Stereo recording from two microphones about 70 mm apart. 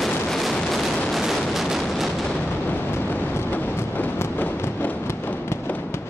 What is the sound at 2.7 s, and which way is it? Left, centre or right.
Vehicle, left.